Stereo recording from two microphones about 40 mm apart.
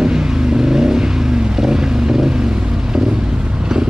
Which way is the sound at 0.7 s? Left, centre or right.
Centre.